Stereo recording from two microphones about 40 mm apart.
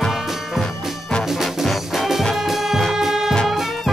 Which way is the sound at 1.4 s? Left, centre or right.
Centre.